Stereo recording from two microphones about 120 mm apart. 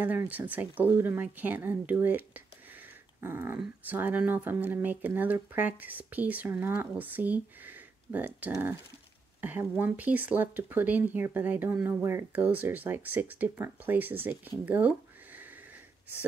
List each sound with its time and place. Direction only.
0.0 s speech: 15° right (ahead or behind)
3.2 s dog: 20° right (ahead or behind)
3.5 s speech: 15° right (ahead or behind)
14.7 s a sound: 15° right (ahead or behind)